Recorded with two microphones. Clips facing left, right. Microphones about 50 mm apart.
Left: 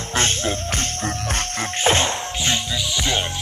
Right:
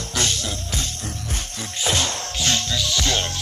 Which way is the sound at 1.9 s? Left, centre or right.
Left.